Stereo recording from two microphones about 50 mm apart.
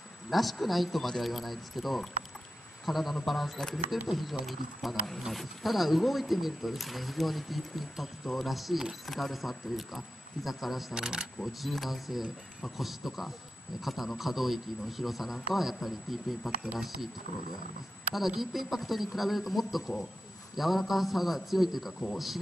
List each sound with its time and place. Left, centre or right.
0.3 s speech: centre
11.0 s speech: centre
11.4 s speech: centre
18.1 s speech: centre